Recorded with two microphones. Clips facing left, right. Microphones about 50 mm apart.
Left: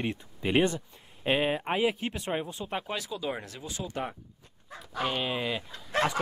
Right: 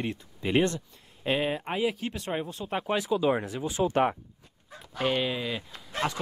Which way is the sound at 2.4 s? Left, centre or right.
Centre.